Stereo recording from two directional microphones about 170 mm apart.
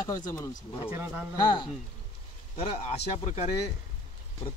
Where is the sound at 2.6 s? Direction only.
40° left (ahead or behind).